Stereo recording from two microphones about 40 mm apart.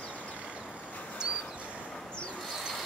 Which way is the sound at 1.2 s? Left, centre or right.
Right.